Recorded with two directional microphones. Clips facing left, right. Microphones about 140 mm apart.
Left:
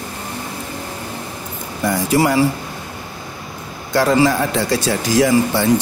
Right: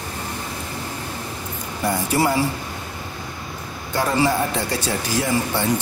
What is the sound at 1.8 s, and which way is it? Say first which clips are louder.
Speech: left 4 dB; 90° left.